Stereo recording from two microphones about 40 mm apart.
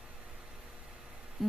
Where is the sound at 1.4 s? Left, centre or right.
Centre.